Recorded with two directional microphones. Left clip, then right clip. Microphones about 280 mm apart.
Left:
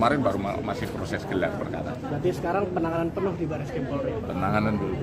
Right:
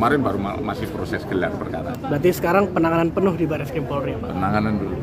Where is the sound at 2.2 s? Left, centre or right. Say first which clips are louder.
Right 8 dB; right.